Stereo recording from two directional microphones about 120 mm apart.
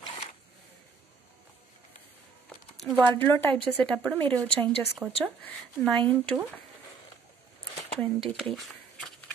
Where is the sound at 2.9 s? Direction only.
15° left (ahead or behind).